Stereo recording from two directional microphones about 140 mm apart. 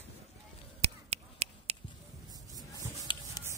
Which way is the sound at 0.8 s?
50° right (ahead or behind).